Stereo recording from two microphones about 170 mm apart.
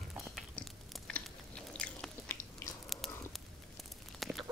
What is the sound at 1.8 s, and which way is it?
Biting, 5° left (ahead or behind).